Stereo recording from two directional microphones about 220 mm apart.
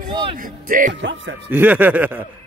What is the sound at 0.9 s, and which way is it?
Speech, 55° right (ahead or behind).